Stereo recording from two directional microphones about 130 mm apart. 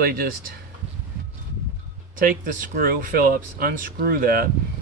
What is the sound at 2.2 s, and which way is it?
Speech, 90° right.